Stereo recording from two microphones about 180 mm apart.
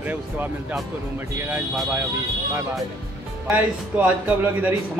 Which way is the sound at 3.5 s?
10° right (ahead or behind).